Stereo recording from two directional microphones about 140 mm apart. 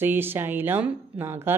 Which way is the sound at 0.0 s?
15° right (ahead or behind).